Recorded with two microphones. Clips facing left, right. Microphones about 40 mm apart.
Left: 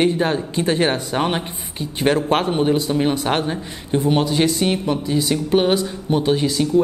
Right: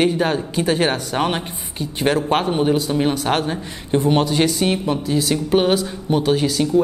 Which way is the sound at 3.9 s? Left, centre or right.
Centre.